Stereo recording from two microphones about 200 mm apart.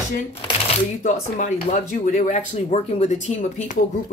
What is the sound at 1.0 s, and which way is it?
Speech, 40° left (ahead or behind).